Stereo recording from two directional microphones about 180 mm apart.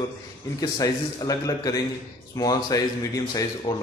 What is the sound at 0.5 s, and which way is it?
A man's voice, 20° left (ahead or behind).